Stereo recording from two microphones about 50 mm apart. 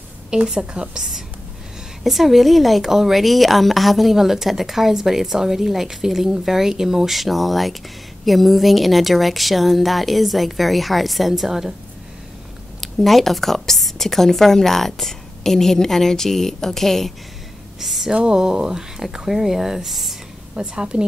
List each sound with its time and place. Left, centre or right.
0.3 s a woman's voice: centre
12.8 s a woman's voice: centre
18.1 s speech: centre
20.5 s speech: centre